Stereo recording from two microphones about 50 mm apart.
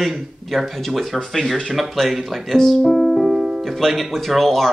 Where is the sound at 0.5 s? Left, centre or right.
Centre.